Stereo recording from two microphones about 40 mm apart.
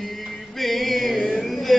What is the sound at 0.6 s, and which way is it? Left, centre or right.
Music, centre.